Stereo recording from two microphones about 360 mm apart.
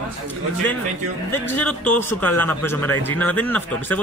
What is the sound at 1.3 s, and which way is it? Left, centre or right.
Speech, centre.